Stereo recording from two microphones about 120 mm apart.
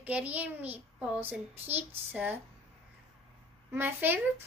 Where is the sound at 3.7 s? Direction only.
15° right (ahead or behind).